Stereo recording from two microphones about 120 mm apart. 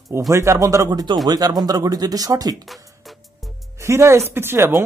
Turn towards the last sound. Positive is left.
turn(degrees=-20)  # may be behind; listen again after turning